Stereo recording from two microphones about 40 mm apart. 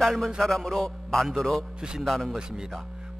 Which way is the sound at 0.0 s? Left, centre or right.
Centre.